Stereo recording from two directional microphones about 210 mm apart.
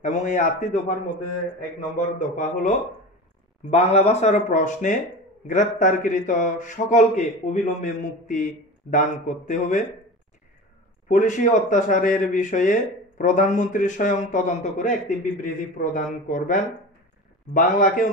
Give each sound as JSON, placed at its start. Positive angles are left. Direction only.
{"t": 0.0, "sound": "a man's voice", "side_deg": 35}
{"t": 2.0, "sound": "a man's voice", "side_deg": 35}
{"t": 3.7, "sound": "a man's voice", "side_deg": 30}
{"t": 11.1, "sound": "a man's voice", "side_deg": 35}